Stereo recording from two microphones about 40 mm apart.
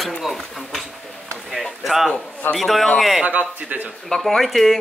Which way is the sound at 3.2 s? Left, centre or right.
Right.